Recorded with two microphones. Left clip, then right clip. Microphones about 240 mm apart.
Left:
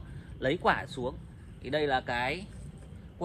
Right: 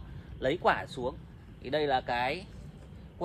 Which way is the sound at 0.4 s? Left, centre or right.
Right.